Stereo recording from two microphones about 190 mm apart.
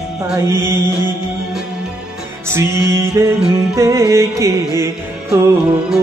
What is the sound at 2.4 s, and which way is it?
Music, 15° right (ahead or behind).